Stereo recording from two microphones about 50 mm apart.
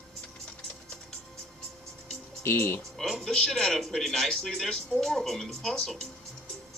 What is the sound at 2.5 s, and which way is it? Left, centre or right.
Speech, left.